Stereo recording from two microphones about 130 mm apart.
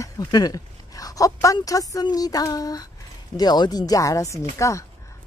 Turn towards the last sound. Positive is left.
turn(degrees=25)  # may be behind; listen again after turning